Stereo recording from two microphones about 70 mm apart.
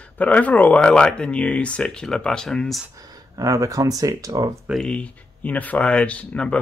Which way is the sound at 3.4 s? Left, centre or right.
Right.